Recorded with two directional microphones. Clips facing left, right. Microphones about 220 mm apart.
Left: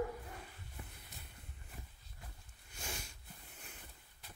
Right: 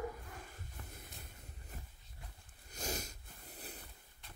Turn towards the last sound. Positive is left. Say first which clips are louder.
# right 5 dB
turn(degrees=-35)  # may be behind; listen again after turning